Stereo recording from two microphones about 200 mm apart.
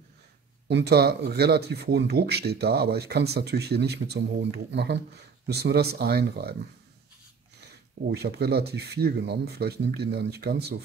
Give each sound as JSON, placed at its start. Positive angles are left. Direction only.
{"t": 0.7, "sound": "speech", "side_deg": -55}
{"t": 8.1, "sound": "speech", "side_deg": -55}